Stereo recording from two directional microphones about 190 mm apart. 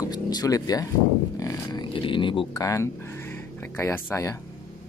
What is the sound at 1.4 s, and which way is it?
Speech, 20° left (ahead or behind).